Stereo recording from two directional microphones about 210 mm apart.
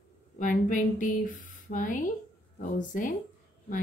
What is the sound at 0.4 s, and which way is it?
Speech, 40° left (ahead or behind).